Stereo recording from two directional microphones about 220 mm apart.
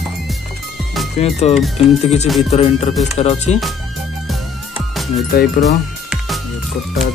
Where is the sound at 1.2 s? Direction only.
30° left (ahead or behind).